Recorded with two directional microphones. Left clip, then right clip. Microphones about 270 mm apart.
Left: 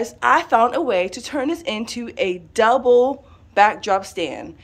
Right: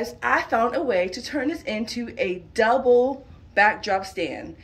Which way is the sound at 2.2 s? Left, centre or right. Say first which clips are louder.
Left 4 dB; left.